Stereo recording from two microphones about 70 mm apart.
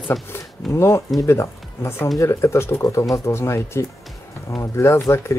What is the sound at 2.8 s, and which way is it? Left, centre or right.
Speech, left.